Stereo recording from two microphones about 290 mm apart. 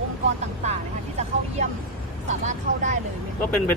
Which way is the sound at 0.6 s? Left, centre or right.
Right.